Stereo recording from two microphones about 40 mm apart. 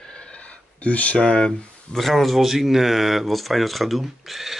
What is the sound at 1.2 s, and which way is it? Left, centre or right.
Speech, left.